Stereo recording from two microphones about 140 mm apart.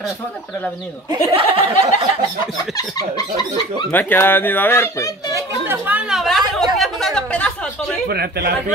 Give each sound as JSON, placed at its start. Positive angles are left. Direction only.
{"t": 1.1, "sound": "speech", "side_deg": -40}
{"t": 3.9, "sound": "speech", "side_deg": 15}
{"t": 5.3, "sound": "speech", "side_deg": -15}